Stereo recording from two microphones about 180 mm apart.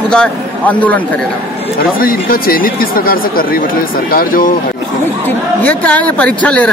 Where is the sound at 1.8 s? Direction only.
55° left (ahead or behind).